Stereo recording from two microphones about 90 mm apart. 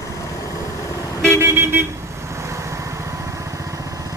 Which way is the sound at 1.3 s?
25° right (ahead or behind).